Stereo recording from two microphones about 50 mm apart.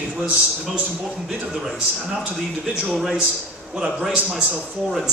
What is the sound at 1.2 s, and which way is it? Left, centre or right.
A man's voice, centre.